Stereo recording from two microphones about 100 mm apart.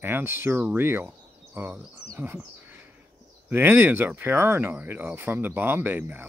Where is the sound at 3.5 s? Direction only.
20° right (ahead or behind).